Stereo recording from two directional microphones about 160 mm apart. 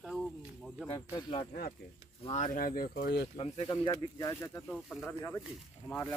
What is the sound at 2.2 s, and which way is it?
Speech, 50° left (ahead or behind).